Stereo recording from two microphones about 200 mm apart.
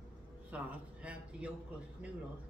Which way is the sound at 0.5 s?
5° right (ahead or behind).